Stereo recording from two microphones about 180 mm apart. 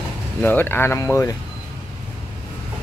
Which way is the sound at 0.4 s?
10° left (ahead or behind).